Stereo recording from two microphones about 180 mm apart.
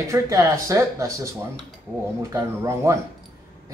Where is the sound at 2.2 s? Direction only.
15° right (ahead or behind).